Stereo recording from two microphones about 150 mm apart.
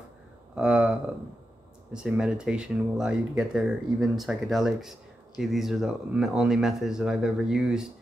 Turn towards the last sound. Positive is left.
turn(degrees=-5)  # may be behind; listen again after turning